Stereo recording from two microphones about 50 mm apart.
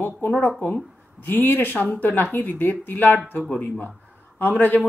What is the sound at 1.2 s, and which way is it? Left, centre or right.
Speech, left.